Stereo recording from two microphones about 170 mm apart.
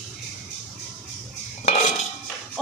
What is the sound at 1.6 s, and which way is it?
Cutlery, 45° left (ahead or behind).